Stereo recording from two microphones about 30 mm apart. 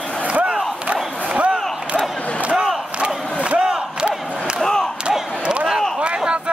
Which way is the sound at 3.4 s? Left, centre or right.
Right.